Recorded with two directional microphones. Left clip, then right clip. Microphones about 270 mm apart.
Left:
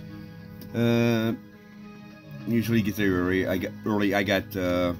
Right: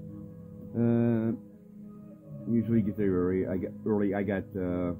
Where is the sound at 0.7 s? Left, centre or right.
Centre.